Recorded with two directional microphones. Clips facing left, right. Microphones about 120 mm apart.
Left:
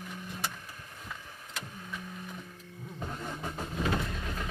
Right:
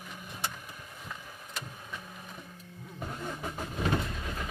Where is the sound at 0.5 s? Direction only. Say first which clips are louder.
Right 1 dB; 10° right (ahead or behind).